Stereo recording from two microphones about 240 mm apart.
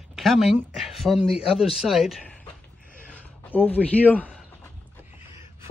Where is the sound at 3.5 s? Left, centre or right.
Centre.